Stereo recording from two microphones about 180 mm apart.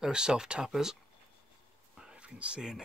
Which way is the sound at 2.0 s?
5° right (ahead or behind).